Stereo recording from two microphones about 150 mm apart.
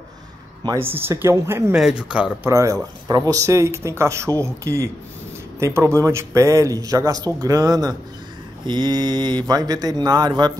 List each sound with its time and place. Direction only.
0.9 s speech: 15° right (ahead or behind)
1.8 s speech: 5° right (ahead or behind)
2.5 s speech: 20° right (ahead or behind)